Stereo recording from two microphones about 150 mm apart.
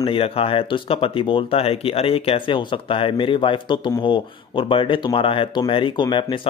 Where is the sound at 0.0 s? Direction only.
40° left (ahead or behind).